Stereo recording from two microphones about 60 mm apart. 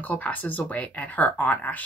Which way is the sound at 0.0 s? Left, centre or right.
Left.